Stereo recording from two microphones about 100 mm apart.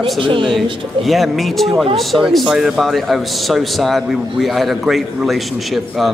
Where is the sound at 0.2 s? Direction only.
60° right (ahead or behind).